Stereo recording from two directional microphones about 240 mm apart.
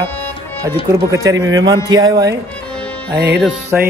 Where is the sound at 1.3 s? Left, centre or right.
Right.